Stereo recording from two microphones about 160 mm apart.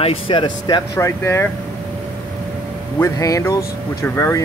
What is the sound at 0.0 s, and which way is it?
Speech, 35° left (ahead or behind).